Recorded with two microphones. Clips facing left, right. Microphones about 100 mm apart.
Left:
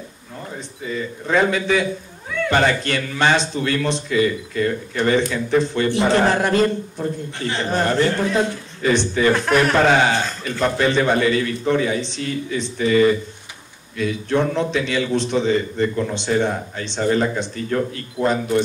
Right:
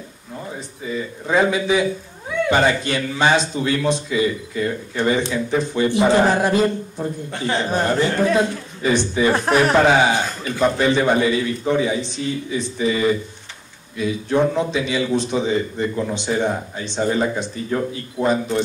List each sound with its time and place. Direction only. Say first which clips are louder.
0.8 s a man's voice: even; 15° right (ahead or behind)